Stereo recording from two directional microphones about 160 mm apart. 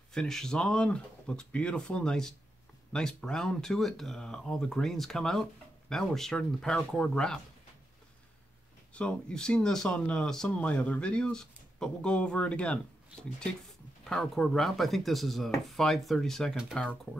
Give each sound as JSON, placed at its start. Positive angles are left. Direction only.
{"t": 0.1, "sound": "speech", "side_deg": 5}
{"t": 8.9, "sound": "speech", "side_deg": 5}
{"t": 14.0, "sound": "speech", "side_deg": 5}